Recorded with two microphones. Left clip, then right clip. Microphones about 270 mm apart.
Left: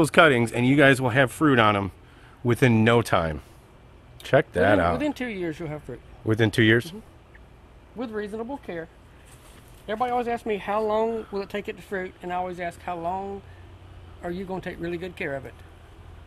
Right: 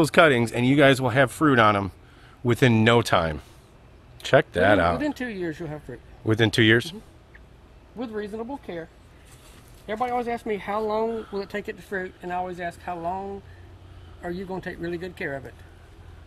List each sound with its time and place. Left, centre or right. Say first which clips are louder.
0.0 s speech: even; centre
4.9 s speech: even; centre
6.2 s speech: right 1 dB; centre
8.0 s speech: even; centre
10.1 s speech: left 1 dB; centre
10.8 s speech: left 2 dB; left
11.1 s speech: even; centre